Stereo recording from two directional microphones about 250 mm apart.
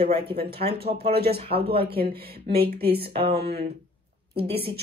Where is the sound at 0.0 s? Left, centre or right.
Right.